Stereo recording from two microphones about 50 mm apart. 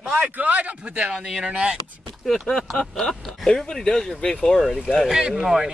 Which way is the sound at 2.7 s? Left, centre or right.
Centre.